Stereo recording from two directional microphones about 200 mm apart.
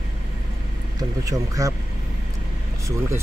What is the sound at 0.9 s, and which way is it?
Speech, 15° right (ahead or behind).